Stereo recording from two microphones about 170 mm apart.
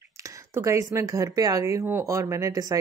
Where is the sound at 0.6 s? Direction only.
15° right (ahead or behind).